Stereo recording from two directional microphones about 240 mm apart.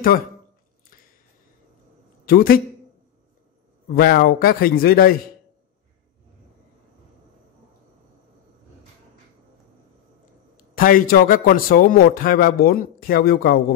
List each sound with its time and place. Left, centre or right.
2.2 s a man's voice: left
3.9 s a man's voice: left
10.6 s a man's voice: left